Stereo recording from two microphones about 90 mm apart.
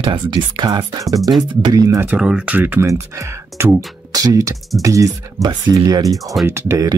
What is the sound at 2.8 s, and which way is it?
Speech, 35° right (ahead or behind).